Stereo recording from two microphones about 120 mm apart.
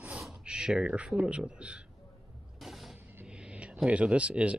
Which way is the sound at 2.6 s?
Centre (ahead or behind).